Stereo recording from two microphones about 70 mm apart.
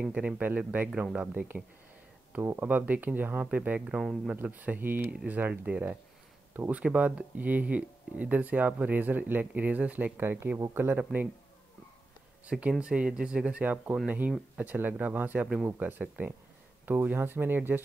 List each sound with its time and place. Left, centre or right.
0.0 s speech: centre
2.4 s speech: right
2.7 s speech: right
12.4 s speech: centre